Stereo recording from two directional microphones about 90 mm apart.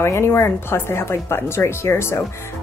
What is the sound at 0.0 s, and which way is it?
Speech, 30° left (ahead or behind).